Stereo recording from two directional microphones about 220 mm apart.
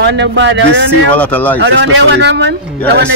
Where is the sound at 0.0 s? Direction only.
50° right (ahead or behind).